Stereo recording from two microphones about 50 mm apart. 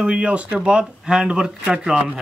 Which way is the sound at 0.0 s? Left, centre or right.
Right.